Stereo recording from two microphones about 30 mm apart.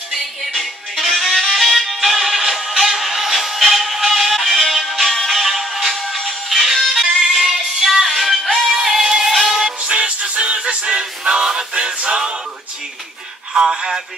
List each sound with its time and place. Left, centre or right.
0.1 s music: centre
5.9 s music: centre
8.7 s synthetic singing: centre
9.2 s music: centre
9.8 s music: right
10.6 s music: right
13.5 s synthetic singing: right
13.7 s speech: centre